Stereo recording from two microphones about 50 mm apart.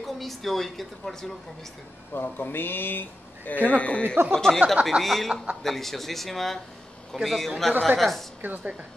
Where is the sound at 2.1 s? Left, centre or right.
Left.